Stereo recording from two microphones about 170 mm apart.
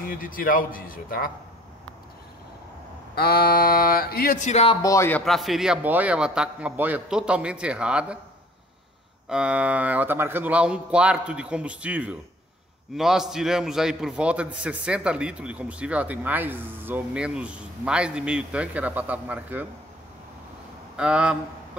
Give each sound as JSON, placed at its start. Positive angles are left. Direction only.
{"t": 0.0, "sound": "speech", "side_deg": 55}
{"t": 3.2, "sound": "speech", "side_deg": 60}
{"t": 4.8, "sound": "speech", "side_deg": 15}
{"t": 5.2, "sound": "a man's voice", "side_deg": 0}
{"t": 9.3, "sound": "a man's voice", "side_deg": -5}
{"t": 20.9, "sound": "speech", "side_deg": -5}